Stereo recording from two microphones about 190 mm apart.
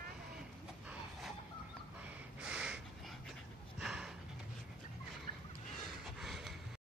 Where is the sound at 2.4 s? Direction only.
5° right (ahead or behind).